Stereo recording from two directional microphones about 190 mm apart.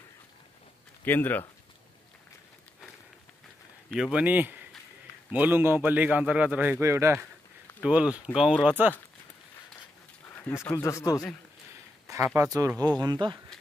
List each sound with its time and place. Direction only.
1.0 s speech: 10° left (ahead or behind)
3.9 s a man's voice: 5° right (ahead or behind)
10.3 s speech: 10° left (ahead or behind)
12.4 s a man's voice: 15° right (ahead or behind)